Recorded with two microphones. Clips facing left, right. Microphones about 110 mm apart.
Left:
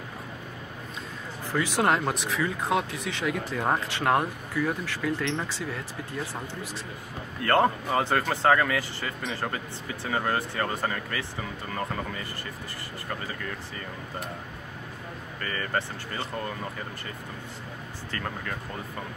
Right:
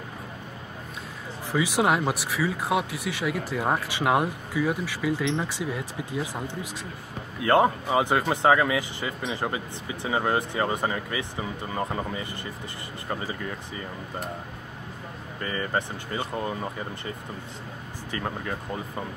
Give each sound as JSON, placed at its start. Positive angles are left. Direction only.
{"t": 1.5, "sound": "speech", "side_deg": -10}
{"t": 13.3, "sound": "speech", "side_deg": -15}
{"t": 15.4, "sound": "speech", "side_deg": -15}
{"t": 18.1, "sound": "speech", "side_deg": -15}